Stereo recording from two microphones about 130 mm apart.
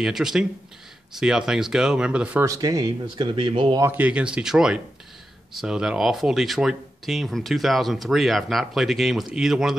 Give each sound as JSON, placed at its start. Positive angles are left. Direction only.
{"t": 0.0, "sound": "speech", "side_deg": -5}
{"t": 2.4, "sound": "speech", "side_deg": -25}
{"t": 3.3, "sound": "speech", "side_deg": -40}
{"t": 3.8, "sound": "speech", "side_deg": -15}